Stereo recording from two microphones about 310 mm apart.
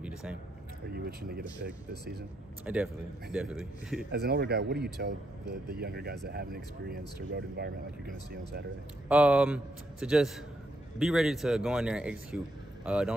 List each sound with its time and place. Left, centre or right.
0.0 s a sound: centre
0.9 s speech: right
2.6 s a man's voice: centre
4.1 s speech: right
9.1 s a man's voice: centre